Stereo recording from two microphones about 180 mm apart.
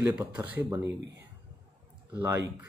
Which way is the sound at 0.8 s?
75° right (ahead or behind).